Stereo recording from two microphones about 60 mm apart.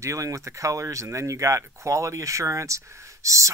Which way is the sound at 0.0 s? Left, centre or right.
Right.